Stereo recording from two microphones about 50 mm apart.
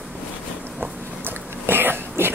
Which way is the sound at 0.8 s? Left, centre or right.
Right.